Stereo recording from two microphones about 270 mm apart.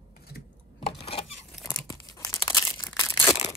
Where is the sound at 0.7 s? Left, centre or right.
Left.